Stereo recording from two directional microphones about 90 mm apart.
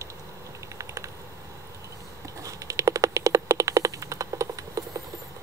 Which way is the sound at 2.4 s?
40° right (ahead or behind).